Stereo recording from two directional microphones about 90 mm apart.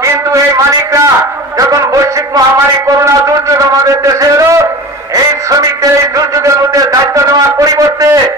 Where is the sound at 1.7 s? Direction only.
40° right (ahead or behind).